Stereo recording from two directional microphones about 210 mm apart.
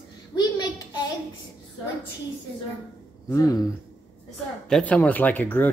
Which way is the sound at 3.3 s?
15° left (ahead or behind).